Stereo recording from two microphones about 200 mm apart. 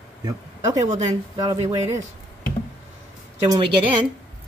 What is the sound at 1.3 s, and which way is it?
Speech, 20° right (ahead or behind).